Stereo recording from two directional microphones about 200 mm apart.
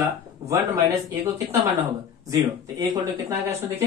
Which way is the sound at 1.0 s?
15° right (ahead or behind).